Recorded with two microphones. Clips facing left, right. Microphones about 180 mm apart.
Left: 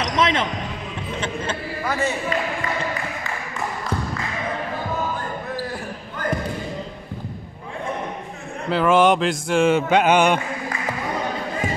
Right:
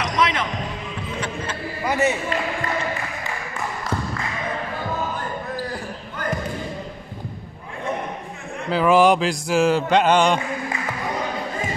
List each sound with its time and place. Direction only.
0.0 s basketball bounce: 25° left (ahead or behind)
1.9 s speech: 20° right (ahead or behind)
8.6 s a sound: centre (ahead or behind)